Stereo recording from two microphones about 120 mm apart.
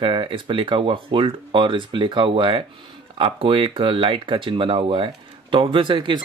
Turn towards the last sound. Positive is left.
turn(degrees=-40)  # may be behind; listen again after turning